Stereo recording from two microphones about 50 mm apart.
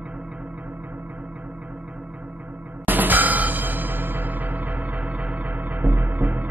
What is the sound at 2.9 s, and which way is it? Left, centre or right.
Music, right.